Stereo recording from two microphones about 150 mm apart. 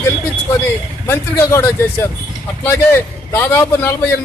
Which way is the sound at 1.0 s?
15° left (ahead or behind).